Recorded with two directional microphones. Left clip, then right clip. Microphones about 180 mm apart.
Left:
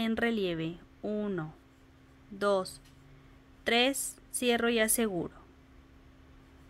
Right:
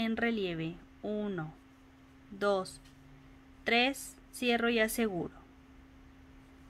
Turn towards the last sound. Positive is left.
turn(degrees=20)  # may be behind; listen again after turning